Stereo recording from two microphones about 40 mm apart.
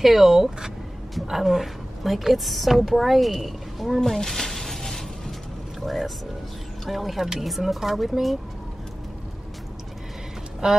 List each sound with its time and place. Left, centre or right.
0.0 s a woman's voice: centre
4.0 s a sound: centre
5.8 s a woman's voice: centre
10.6 s speech: centre